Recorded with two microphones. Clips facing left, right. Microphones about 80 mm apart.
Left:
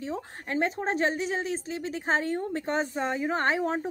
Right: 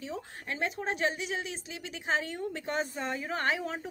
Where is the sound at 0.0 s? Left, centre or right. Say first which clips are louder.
Left 5 dB; left.